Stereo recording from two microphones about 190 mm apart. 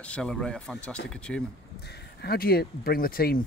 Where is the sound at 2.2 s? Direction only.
55° left (ahead or behind).